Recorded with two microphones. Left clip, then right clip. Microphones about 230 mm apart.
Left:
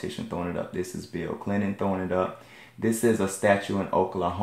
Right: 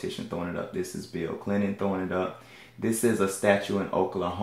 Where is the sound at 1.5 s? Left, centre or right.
Left.